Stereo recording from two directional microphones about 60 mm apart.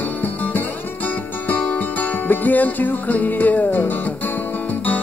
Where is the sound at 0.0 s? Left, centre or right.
Left.